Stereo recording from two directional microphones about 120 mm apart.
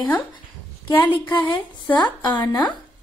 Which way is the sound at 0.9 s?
15° left (ahead or behind).